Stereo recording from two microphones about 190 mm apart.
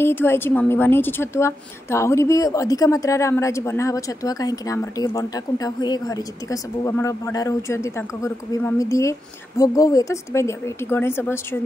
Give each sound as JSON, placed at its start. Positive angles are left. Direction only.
{"t": 0.0, "sound": "a woman's voice", "side_deg": 10}